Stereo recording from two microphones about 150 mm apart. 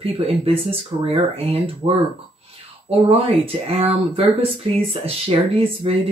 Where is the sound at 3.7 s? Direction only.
40° right (ahead or behind).